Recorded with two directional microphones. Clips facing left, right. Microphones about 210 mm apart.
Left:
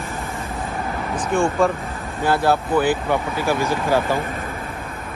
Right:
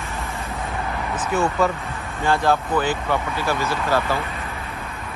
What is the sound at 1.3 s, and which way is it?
Speech, 5° right (ahead or behind).